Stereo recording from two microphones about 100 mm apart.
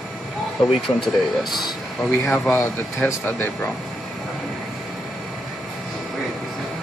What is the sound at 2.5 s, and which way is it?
Speech, 20° left (ahead or behind).